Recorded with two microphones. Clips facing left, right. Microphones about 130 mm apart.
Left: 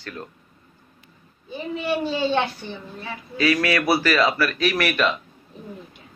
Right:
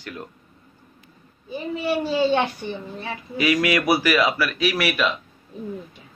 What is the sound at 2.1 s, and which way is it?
Speech, 10° right (ahead or behind).